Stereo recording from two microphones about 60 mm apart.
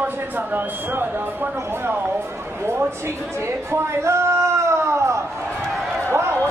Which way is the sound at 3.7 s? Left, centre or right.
Right.